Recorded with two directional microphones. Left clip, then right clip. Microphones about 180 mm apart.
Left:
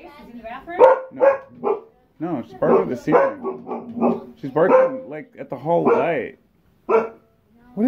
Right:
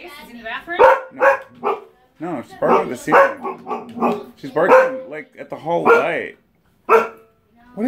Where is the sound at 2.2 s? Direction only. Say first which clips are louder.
Right 1 dB; 5° left (ahead or behind).